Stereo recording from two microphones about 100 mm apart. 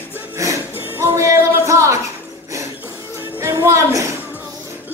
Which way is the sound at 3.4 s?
30° right (ahead or behind).